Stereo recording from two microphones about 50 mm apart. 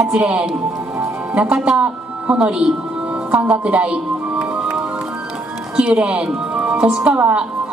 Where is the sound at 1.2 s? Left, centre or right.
Right.